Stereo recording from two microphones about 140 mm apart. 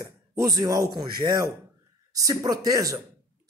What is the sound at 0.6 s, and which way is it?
Speech, 25° right (ahead or behind).